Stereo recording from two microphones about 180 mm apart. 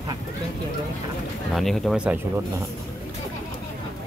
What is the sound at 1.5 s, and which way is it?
Speech, centre (ahead or behind).